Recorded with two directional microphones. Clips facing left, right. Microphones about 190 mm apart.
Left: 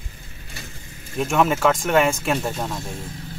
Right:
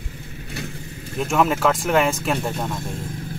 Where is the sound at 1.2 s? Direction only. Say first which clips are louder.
Even; centre (ahead or behind).